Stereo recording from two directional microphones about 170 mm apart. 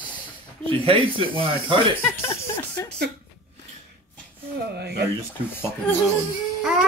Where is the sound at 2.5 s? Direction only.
15° left (ahead or behind).